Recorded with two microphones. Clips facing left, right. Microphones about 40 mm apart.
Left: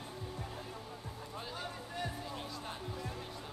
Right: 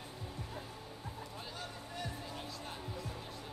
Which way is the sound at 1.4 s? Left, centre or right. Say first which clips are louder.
Left 6 dB; centre.